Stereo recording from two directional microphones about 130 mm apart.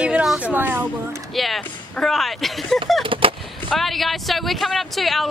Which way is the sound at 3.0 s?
40° right (ahead or behind).